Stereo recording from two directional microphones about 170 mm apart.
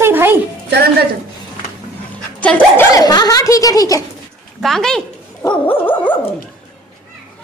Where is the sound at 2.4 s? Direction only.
10° left (ahead or behind).